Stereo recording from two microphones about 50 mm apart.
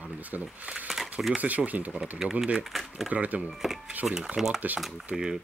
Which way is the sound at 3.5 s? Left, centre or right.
Centre.